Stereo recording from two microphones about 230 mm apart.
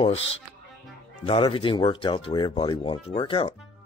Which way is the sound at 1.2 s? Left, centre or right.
Left.